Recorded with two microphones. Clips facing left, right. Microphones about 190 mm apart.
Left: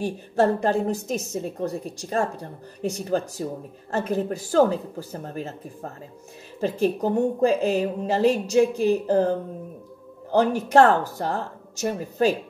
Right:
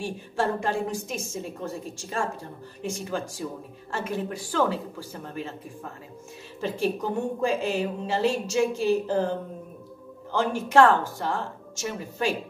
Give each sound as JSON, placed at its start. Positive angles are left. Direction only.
{"t": 0.0, "sound": "a woman's voice", "side_deg": 40}
{"t": 10.3, "sound": "a woman's voice", "side_deg": 40}